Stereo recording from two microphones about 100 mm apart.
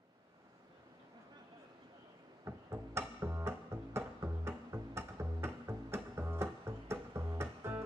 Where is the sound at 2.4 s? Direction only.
25° right (ahead or behind).